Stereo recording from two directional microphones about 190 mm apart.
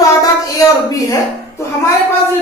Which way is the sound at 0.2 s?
20° left (ahead or behind).